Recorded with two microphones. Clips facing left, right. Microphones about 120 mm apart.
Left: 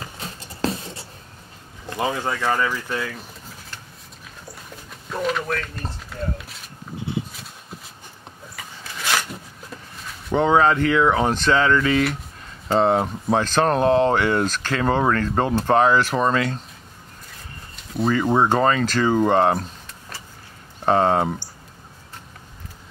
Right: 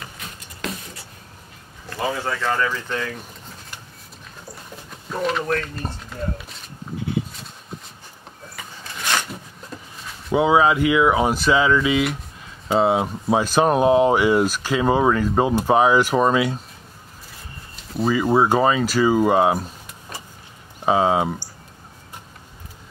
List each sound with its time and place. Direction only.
0.0 s patter: 30° left (ahead or behind)
1.9 s speech: 20° left (ahead or behind)
5.1 s speech: centre (ahead or behind)
9.9 s speech: 5° right (ahead or behind)
17.7 s speech: centre (ahead or behind)
20.8 s speech: 5° right (ahead or behind)